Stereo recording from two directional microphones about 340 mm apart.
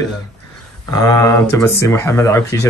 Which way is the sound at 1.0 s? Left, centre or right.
Centre.